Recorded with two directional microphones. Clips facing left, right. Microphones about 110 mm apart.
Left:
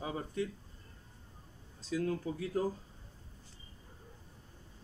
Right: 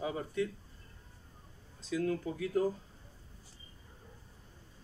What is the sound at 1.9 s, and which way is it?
Speech, 35° left (ahead or behind).